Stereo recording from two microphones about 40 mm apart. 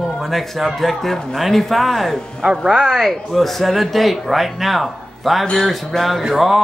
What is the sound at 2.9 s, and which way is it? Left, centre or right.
Speech, centre.